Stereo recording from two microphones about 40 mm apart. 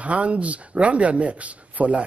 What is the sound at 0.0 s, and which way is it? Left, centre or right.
Speech, right.